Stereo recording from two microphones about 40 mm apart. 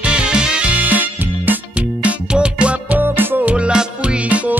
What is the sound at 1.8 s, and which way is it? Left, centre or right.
Music, right.